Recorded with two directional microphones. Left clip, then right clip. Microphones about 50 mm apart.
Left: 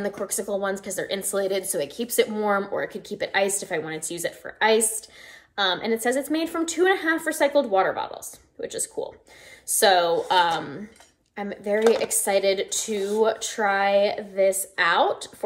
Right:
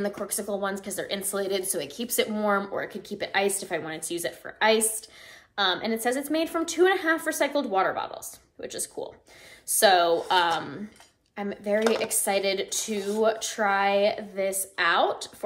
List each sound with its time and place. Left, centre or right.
0.0 s a woman's voice: right
2.9 s a woman's voice: right